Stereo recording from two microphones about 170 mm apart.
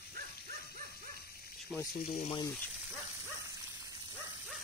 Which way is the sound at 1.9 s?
55° left (ahead or behind).